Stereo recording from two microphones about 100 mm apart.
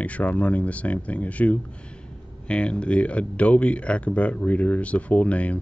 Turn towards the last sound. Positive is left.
turn(degrees=15)  # may be behind; listen again after turning